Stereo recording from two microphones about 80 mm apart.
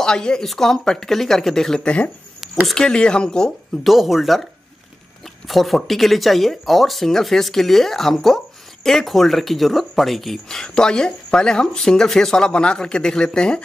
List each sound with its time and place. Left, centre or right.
0.0 s speech: centre